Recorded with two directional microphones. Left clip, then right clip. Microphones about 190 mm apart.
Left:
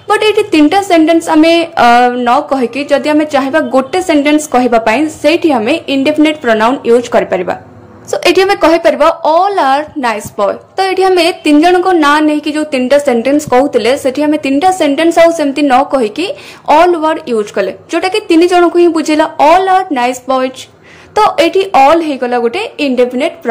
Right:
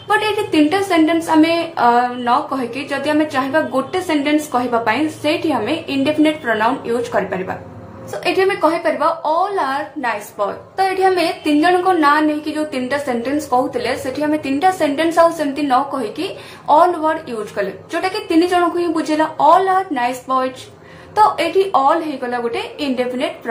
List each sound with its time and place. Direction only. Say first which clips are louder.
0.1 s a woman's voice: left 7 dB; 40° left (ahead or behind)